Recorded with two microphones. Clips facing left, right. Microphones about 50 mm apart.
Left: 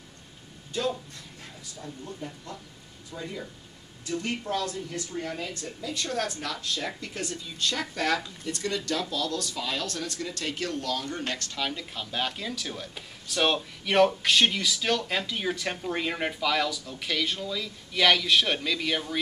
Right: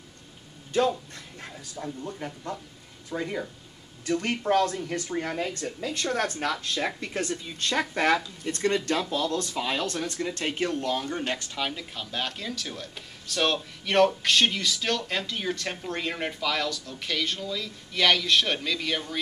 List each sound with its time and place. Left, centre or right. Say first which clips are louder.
1.4 s speech: right 6 dB; right; by 19.1 s centre